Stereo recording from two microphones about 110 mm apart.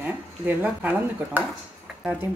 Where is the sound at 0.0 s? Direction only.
20° right (ahead or behind).